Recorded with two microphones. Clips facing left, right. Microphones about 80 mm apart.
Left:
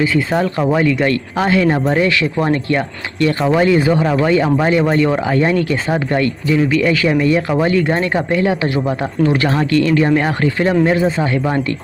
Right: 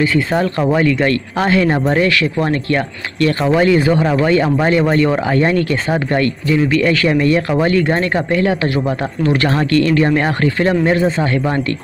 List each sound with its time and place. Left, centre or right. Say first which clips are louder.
0.0 s speech: even; centre
2.0 s speech: even; left
4.0 s speech: even; centre